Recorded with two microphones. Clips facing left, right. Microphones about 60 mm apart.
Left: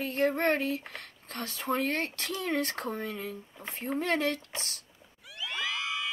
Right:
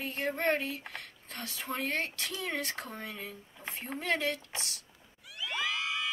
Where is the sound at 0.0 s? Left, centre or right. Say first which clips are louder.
Left 5 dB; left.